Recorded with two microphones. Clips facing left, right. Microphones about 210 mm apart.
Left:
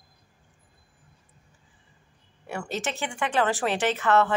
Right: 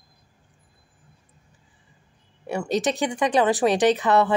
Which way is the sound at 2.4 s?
15° right (ahead or behind).